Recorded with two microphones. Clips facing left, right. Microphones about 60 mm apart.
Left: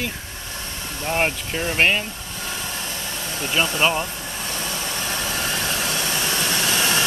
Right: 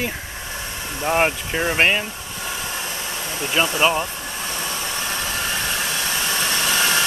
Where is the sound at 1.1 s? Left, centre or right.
Centre.